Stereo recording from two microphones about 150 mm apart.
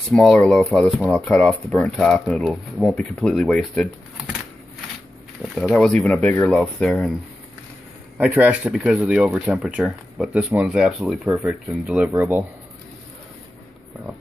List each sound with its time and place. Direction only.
0.1 s speech: 5° left (ahead or behind)
5.4 s a sound: 5° right (ahead or behind)
5.7 s speech: 5° left (ahead or behind)
8.2 s speech: 10° right (ahead or behind)
12.1 s speech: 20° right (ahead or behind)